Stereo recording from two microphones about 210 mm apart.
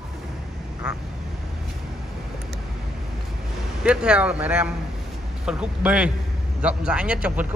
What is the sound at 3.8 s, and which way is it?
A man's voice, 5° right (ahead or behind).